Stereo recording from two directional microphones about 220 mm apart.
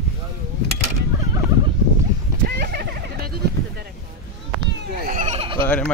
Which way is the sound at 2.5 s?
45° right (ahead or behind).